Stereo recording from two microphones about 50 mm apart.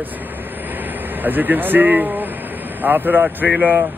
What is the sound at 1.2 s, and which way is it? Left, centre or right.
Speech, right.